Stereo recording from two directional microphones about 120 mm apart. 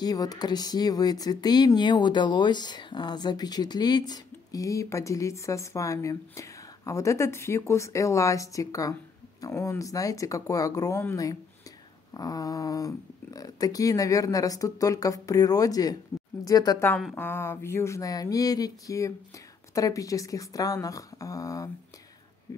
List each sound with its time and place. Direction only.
0.0 s speech: 30° left (ahead or behind)
17.1 s speech: 20° left (ahead or behind)